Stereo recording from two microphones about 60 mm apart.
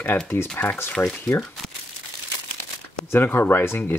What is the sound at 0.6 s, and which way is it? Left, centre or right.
Speech, left.